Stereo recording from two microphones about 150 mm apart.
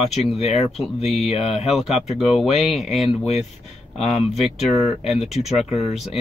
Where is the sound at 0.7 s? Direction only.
Centre (ahead or behind).